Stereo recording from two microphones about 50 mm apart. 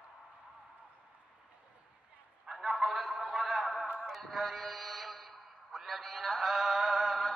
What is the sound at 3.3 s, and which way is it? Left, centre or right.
Music, centre.